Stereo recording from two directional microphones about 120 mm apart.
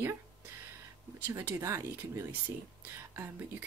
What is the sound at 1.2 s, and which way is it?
Speech, 15° right (ahead or behind).